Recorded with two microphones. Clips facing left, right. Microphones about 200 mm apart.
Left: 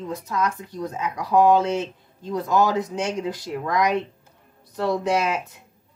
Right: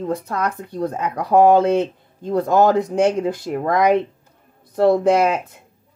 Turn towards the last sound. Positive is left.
turn(degrees=-55)  # may be behind; listen again after turning